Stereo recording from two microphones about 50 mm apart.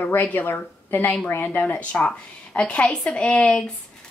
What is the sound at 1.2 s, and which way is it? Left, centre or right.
Speech, left.